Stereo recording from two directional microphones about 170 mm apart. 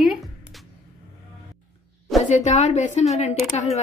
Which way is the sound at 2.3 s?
45° left (ahead or behind).